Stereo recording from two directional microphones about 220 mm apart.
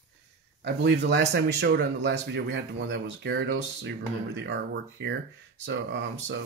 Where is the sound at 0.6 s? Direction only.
50° right (ahead or behind).